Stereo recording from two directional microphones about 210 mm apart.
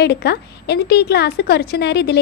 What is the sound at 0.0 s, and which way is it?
A woman's voice, 50° left (ahead or behind).